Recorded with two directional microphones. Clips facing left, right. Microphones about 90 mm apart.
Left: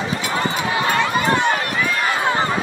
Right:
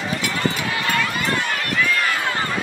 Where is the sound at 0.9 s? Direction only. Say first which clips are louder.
Left 4 dB; 25° left (ahead or behind).